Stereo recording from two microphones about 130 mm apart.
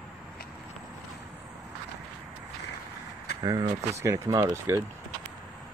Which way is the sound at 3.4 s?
30° right (ahead or behind).